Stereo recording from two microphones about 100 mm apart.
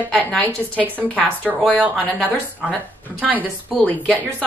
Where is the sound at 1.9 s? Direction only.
15° left (ahead or behind).